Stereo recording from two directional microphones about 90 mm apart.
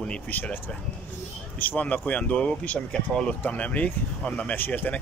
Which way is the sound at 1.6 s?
20° left (ahead or behind).